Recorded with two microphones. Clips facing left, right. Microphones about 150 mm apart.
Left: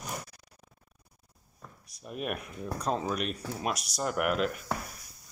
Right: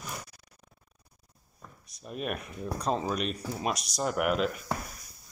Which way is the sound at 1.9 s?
10° left (ahead or behind).